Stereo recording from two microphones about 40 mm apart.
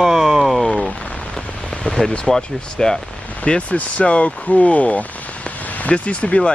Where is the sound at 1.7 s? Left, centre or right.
Left.